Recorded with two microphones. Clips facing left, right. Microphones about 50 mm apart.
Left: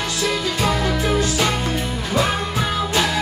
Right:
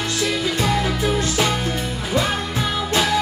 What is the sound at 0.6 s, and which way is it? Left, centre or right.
Music, centre.